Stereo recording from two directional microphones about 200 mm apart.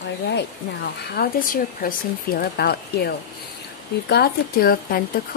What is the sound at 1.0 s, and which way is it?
A woman's voice, 50° left (ahead or behind).